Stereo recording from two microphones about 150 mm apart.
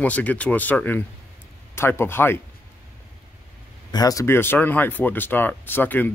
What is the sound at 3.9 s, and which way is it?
Speech, 25° left (ahead or behind).